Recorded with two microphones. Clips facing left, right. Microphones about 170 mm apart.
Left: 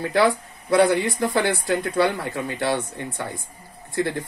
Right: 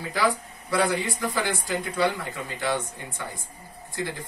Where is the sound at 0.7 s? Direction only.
65° left (ahead or behind).